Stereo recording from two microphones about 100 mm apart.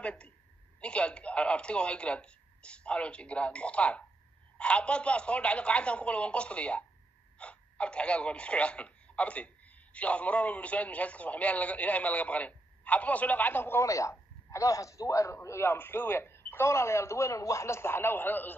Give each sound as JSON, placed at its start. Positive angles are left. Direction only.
{"t": 0.0, "sound": "a woman's voice", "side_deg": 10}
{"t": 13.8, "sound": "a man's voice", "side_deg": 30}